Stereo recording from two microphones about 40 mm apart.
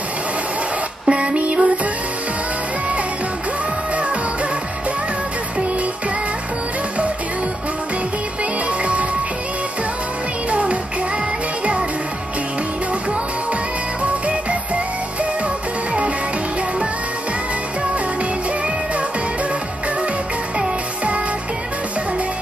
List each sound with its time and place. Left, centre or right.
1.0 s music: right
3.9 s music: right
10.5 s music: right
20.5 s music: right